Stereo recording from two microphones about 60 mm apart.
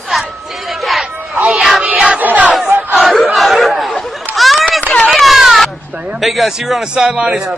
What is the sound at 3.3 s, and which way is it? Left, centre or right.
Chatter, centre.